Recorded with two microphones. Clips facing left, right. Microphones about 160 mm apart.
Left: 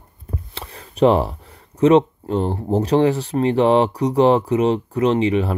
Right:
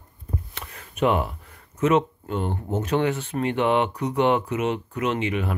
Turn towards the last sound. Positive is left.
turn(degrees=30)  # may be behind; listen again after turning